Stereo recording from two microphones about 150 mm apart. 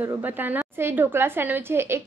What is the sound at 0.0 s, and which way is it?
A woman's voice, 15° right (ahead or behind).